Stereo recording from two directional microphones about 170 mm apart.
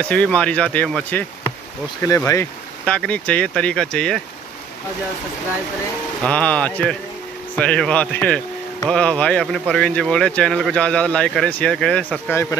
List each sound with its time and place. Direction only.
0.0 s speech: 5° left (ahead or behind)
2.0 s speech: 20° left (ahead or behind)
2.8 s speech: 5° left (ahead or behind)
6.2 s speech: 10° left (ahead or behind)